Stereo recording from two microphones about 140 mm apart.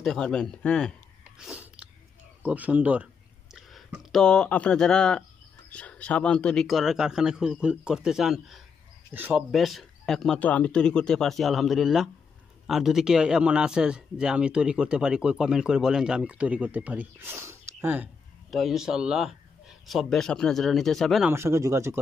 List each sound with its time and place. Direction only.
0.0 s speech: 5° left (ahead or behind)
1.4 s sneeze: 10° right (ahead or behind)
2.4 s speech: 10° right (ahead or behind)
9.1 s speech: 15° right (ahead or behind)
9.5 s speech: centre (ahead or behind)
18.5 s speech: centre (ahead or behind)
21.3 s speech: 20° right (ahead or behind)